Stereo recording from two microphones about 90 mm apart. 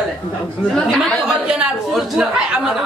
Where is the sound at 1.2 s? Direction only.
10° right (ahead or behind).